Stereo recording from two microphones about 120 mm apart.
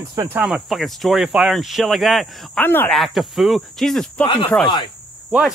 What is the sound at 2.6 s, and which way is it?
Speech, 20° left (ahead or behind).